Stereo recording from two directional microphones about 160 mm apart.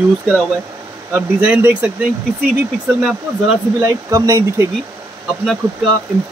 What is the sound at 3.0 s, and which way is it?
Speech, centre (ahead or behind).